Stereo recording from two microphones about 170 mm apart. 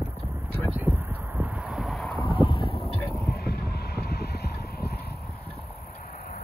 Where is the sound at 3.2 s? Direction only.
70° left (ahead or behind).